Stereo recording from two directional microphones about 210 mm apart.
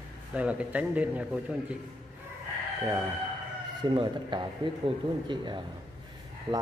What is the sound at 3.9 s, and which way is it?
Speech, 20° right (ahead or behind).